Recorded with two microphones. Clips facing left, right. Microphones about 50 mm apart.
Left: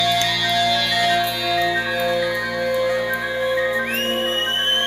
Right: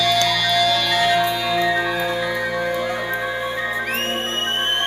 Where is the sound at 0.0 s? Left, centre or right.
Centre.